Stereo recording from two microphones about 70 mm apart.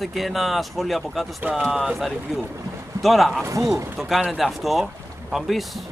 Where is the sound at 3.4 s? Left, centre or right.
Right.